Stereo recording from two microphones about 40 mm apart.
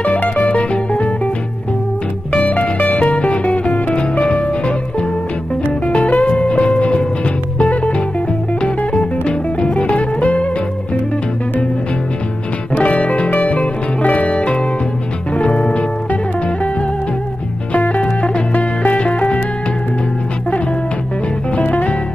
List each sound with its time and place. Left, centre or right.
0.0 s music: left
2.3 s music: left
5.9 s music: left
6.2 s music: left
12.7 s music: left
17.7 s music: left
18.0 s music: left
18.5 s music: left
21.5 s music: left